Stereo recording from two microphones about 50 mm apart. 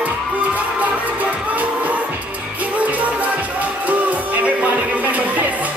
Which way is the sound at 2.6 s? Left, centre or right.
Right.